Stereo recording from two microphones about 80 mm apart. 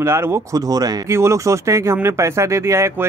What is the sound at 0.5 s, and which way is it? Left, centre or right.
Speech, right.